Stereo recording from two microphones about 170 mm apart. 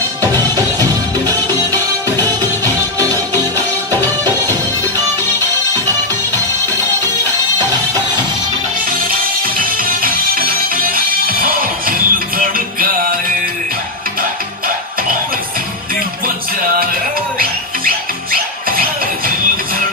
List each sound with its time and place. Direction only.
0.2 s music: 20° right (ahead or behind)
7.5 s music: 20° right (ahead or behind)
9.0 s music: 60° right (ahead or behind)
17.4 s music: 60° right (ahead or behind)